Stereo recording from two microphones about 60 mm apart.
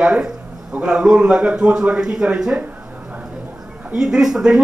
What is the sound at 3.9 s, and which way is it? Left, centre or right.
Speech, centre.